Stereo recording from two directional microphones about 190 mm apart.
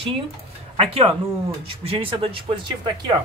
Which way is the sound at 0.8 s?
30° right (ahead or behind).